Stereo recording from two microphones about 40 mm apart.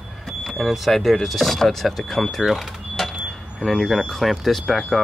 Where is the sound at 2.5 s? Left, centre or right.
Centre.